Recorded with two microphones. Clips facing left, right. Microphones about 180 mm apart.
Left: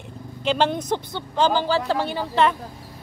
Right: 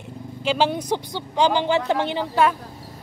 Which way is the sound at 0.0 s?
5° right (ahead or behind).